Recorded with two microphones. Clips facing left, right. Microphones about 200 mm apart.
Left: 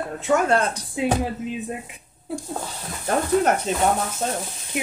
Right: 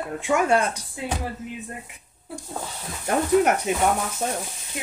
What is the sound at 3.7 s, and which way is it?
Speech, 15° right (ahead or behind).